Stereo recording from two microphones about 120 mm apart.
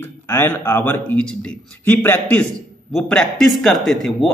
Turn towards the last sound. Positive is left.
turn(degrees=0)  # may be behind; listen again after turning